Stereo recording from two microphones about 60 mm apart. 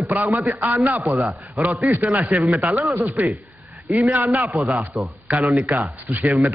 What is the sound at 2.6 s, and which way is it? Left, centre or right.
Speech, right.